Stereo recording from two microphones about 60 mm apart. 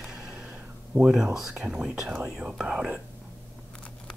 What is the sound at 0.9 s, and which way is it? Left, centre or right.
Speech, right.